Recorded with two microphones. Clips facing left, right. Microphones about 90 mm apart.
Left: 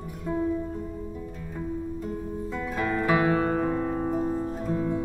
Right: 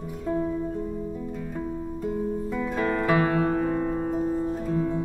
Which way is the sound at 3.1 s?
5° left (ahead or behind).